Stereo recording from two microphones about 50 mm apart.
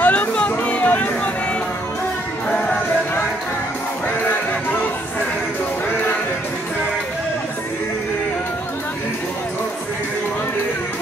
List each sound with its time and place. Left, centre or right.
0.0 s music: left